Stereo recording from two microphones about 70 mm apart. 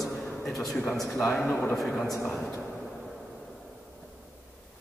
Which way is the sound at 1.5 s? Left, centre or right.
Left.